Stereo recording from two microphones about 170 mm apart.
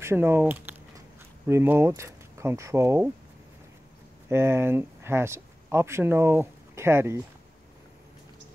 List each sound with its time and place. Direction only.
0.0 s speech: 15° right (ahead or behind)
4.3 s speech: 15° right (ahead or behind)